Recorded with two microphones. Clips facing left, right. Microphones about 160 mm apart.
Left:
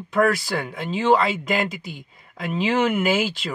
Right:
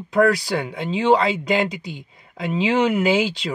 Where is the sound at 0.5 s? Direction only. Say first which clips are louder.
Right 2 dB; 25° right (ahead or behind).